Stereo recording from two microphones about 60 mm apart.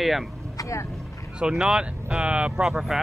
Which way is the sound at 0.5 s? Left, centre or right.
Left.